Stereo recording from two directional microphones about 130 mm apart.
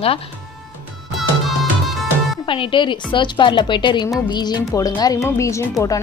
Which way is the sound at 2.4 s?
40° left (ahead or behind).